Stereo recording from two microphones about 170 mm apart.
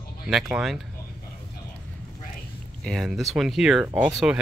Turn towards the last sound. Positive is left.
turn(degrees=-10)  # may be behind; listen again after turning